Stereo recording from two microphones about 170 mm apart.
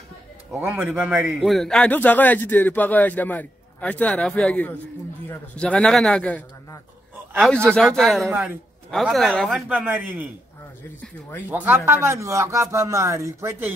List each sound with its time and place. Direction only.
0.6 s a man's voice: 10° right (ahead or behind)
9.7 s speech: 10° right (ahead or behind)
11.4 s speech: 10° right (ahead or behind)